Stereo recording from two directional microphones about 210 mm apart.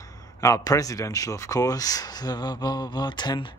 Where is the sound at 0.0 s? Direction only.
15° left (ahead or behind).